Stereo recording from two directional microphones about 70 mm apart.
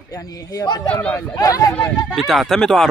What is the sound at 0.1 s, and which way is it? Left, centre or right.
Speech, left.